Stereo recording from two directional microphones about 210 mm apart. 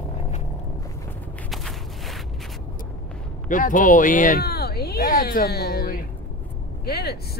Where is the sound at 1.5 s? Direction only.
Centre (ahead or behind).